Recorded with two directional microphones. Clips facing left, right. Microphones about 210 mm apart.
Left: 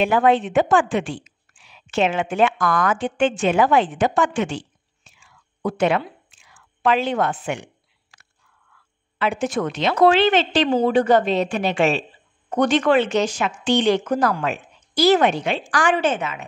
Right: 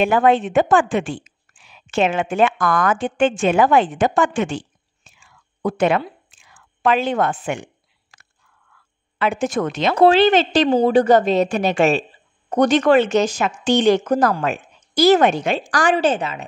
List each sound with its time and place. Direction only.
0.0 s a woman's voice: 50° right (ahead or behind)
8.1 s a sound: 50° right (ahead or behind)
9.2 s a woman's voice: 45° right (ahead or behind)
9.9 s a woman's voice: 35° right (ahead or behind)